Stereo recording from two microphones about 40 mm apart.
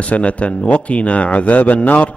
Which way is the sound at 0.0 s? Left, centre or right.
Left.